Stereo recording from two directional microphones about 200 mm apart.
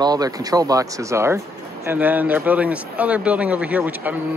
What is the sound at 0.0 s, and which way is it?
Speech, 20° right (ahead or behind).